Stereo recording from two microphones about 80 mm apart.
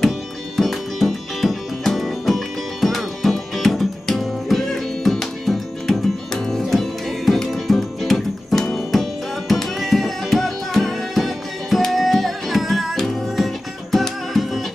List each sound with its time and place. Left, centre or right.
0.6 s music: centre